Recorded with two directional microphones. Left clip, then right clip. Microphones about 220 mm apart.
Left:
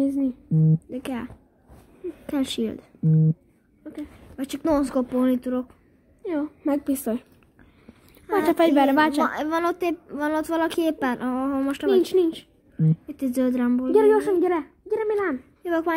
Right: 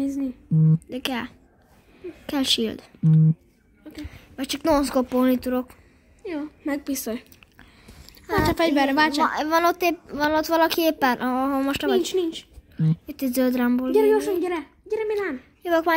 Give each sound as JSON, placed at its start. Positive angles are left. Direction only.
{"t": 0.0, "sound": "a sound", "side_deg": 40}
{"t": 0.8, "sound": "a child's voice", "side_deg": 0}
{"t": 6.2, "sound": "a woman's voice", "side_deg": 40}
{"t": 8.5, "sound": "a woman's voice", "side_deg": 35}
{"t": 9.2, "sound": "a child's voice", "side_deg": 0}
{"t": 12.0, "sound": "a woman's voice", "side_deg": 40}
{"t": 12.7, "sound": "a child's voice", "side_deg": -5}
{"t": 13.9, "sound": "a woman's voice", "side_deg": 40}
{"t": 14.9, "sound": "speech", "side_deg": 25}
{"t": 15.6, "sound": "a child's voice", "side_deg": -5}